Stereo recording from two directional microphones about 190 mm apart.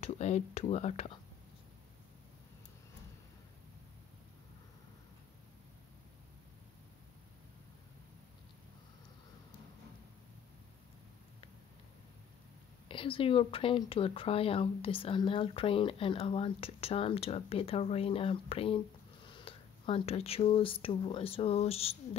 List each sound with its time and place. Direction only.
0.0 s speech: 35° left (ahead or behind)
12.8 s speech: 25° left (ahead or behind)